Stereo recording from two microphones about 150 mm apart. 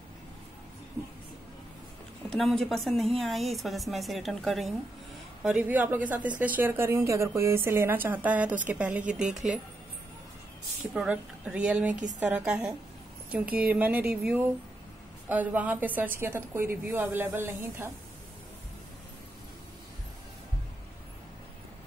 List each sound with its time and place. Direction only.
2.2 s a woman's voice: 5° left (ahead or behind)
10.9 s a woman's voice: 5° right (ahead or behind)
11.9 s a woman's voice: 55° right (ahead or behind)
12.2 s a woman's voice: 10° right (ahead or behind)